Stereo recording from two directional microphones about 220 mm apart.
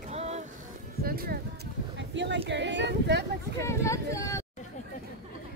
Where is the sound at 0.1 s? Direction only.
30° right (ahead or behind).